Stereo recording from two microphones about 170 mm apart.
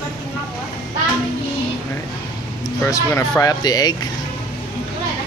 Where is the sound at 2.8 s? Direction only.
15° left (ahead or behind).